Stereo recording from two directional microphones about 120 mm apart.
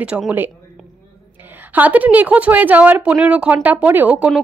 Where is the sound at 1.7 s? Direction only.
15° right (ahead or behind).